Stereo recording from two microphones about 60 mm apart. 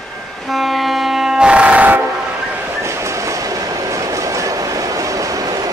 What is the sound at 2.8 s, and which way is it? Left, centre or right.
Train, right.